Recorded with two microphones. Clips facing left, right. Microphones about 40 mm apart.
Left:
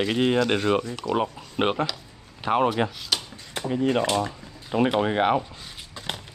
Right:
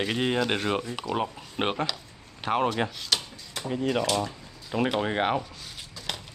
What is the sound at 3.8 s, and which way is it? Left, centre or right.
Speech, centre.